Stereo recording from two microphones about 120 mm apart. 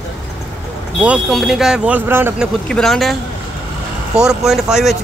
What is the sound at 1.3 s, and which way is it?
Speech, 5° right (ahead or behind).